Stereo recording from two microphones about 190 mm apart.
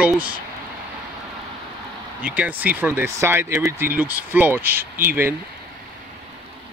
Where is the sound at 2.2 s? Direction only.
5° right (ahead or behind).